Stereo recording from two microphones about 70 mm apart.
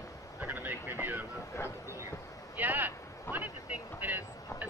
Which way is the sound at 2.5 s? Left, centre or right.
Right.